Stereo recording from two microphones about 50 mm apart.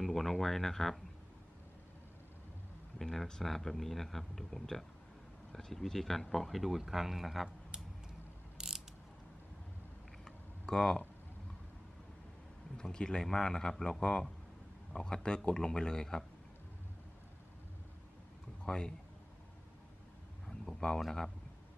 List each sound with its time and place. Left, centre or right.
0.0 s speech: centre
3.0 s a man's voice: centre
8.5 s ratchet: centre
10.2 s a sound: centre
12.7 s a man's voice: centre
18.7 s a man's voice: centre
20.4 s a sound: centre